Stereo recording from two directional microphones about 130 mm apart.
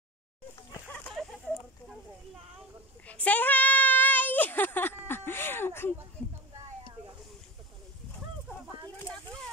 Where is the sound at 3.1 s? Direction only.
10° left (ahead or behind).